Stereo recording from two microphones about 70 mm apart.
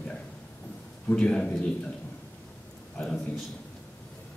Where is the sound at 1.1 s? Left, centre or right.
Centre.